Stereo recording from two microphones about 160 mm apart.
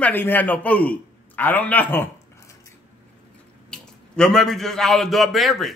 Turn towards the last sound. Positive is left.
turn(degrees=0)  # may be behind; listen again after turning